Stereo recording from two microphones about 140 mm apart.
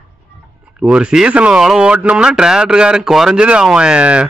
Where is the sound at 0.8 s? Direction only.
5° right (ahead or behind).